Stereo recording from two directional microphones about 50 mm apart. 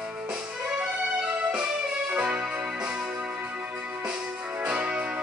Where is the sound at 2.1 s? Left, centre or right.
Right.